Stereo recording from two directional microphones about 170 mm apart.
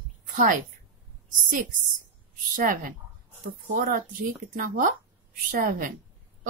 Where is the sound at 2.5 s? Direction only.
55° right (ahead or behind).